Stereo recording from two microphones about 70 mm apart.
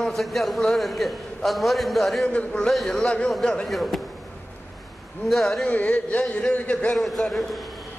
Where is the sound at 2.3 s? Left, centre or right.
Centre.